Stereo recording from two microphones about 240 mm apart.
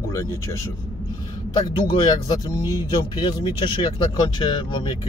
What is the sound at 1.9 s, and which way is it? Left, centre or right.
Speech, centre.